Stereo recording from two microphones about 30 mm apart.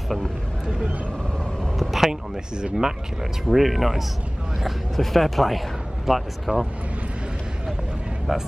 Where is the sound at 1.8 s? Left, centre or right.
Centre.